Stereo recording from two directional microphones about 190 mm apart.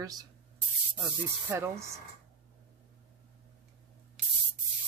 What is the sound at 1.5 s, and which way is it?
Speech, 10° right (ahead or behind).